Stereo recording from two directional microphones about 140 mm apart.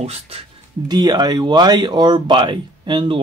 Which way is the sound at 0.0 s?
45° right (ahead or behind).